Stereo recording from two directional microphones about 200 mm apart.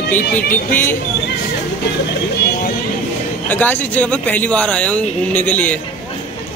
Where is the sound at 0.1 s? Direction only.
10° left (ahead or behind).